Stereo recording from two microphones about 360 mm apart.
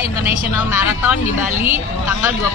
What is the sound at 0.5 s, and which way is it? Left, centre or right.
Speech, left.